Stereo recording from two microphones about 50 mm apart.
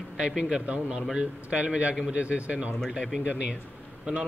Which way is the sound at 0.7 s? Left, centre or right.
Right.